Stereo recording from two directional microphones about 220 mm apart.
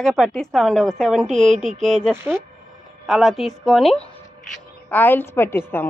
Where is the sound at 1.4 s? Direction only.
30° right (ahead or behind).